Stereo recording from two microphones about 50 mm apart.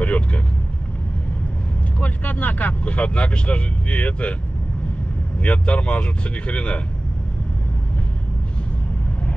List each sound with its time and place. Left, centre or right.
0.0 s vehicle: left
2.0 s speech: left
5.4 s speech: left